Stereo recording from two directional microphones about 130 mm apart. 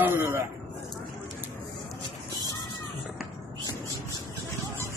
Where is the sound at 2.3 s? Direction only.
30° left (ahead or behind).